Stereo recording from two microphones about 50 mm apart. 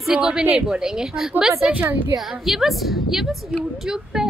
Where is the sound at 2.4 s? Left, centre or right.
Centre.